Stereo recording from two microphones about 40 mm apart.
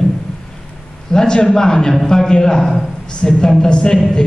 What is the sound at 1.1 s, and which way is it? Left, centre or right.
A man's voice, centre.